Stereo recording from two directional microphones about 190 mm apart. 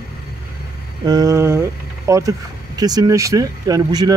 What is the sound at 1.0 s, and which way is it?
Speech, 20° right (ahead or behind).